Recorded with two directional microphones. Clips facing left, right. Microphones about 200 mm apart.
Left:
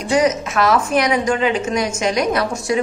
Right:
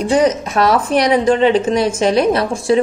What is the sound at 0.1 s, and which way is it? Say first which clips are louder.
A woman's voice: right 1 dB; 30° right (ahead or behind).